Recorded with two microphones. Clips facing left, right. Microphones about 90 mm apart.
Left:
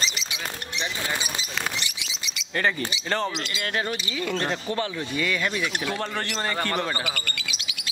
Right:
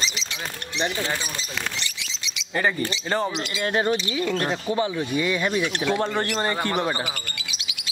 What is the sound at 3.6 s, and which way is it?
Speech, 25° right (ahead or behind).